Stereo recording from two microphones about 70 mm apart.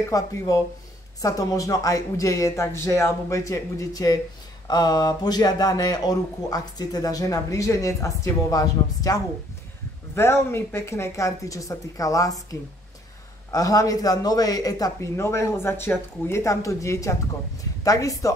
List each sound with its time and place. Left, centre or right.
0.1 s speech: left
4.6 s speech: left
10.1 s speech: left
13.5 s speech: left
15.1 s speech: left